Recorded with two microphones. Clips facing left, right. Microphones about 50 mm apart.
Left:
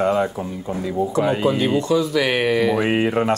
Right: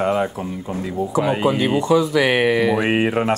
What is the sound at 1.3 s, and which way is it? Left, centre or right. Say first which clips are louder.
Speech: even; centre.